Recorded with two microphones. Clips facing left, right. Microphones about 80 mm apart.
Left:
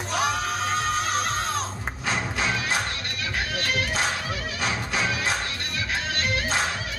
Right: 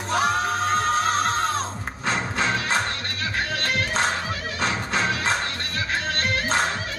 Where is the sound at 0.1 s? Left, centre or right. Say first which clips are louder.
Right 4 dB; right.